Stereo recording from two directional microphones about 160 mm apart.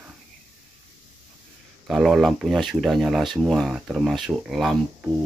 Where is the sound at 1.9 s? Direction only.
Centre (ahead or behind).